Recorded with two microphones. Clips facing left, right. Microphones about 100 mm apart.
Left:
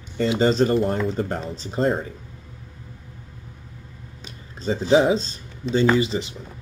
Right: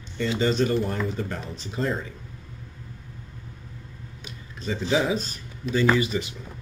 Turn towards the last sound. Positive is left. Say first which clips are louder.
# left 3 dB
turn(degrees=30)  # may be behind; listen again after turning